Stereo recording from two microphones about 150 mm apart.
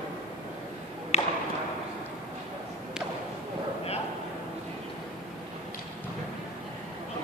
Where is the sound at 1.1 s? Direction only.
50° left (ahead or behind).